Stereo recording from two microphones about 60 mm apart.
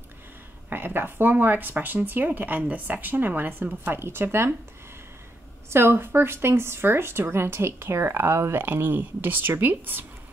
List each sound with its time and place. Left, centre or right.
0.7 s speech: right
4.0 s speech: right
5.7 s speech: right